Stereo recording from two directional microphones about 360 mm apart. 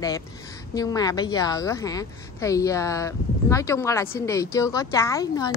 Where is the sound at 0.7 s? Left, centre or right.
Centre.